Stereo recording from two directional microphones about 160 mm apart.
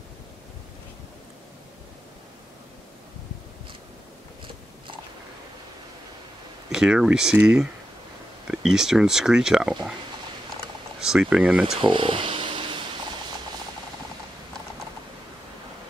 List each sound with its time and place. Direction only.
6.7 s speech: 5° right (ahead or behind)
11.0 s speech: 5° right (ahead or behind)
11.8 s a sound: 30° right (ahead or behind)